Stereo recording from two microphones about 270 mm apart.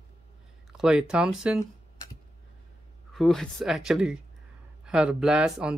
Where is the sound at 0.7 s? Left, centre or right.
Centre.